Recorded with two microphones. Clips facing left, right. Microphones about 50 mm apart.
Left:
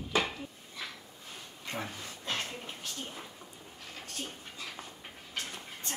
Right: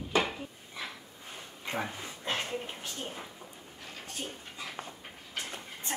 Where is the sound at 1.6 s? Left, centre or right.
Right.